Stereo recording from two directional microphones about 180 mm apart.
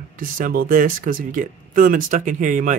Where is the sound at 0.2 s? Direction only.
55° right (ahead or behind).